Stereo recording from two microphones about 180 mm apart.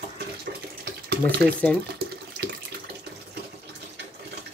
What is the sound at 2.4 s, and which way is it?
Water tap, 65° right (ahead or behind).